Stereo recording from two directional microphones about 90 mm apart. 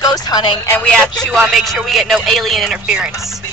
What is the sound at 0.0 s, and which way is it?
Speech, 45° left (ahead or behind).